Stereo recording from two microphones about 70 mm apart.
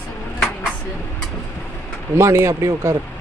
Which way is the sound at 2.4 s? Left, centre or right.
Right.